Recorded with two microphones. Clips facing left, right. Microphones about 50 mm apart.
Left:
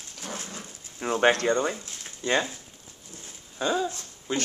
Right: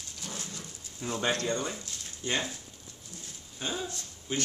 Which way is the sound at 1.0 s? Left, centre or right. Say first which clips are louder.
Left 8 dB; left.